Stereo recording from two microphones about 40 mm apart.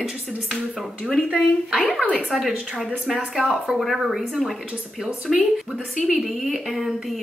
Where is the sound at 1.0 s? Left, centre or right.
Right.